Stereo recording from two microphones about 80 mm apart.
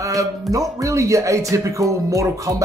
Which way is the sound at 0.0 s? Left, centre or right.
Right.